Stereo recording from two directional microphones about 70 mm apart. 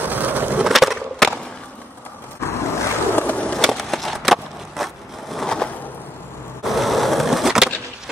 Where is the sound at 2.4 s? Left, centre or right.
Left.